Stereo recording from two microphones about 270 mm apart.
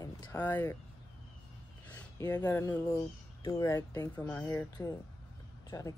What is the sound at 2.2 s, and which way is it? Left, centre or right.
Speech, centre.